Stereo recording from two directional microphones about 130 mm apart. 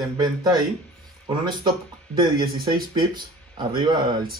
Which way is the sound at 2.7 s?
35° right (ahead or behind).